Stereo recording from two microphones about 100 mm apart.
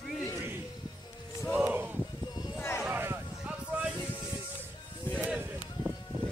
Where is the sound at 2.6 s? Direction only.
25° left (ahead or behind).